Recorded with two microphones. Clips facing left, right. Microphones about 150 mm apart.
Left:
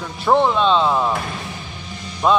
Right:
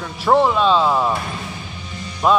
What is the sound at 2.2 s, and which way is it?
Speech, 5° right (ahead or behind).